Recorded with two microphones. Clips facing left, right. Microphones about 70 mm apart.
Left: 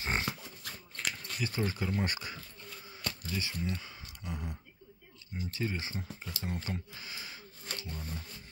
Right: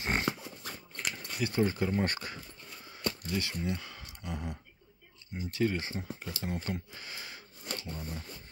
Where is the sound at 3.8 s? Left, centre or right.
Right.